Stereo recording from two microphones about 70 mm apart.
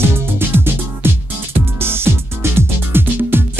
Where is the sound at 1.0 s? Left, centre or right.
Right.